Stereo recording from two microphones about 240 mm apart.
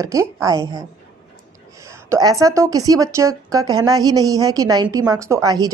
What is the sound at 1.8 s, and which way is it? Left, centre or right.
Speech, centre.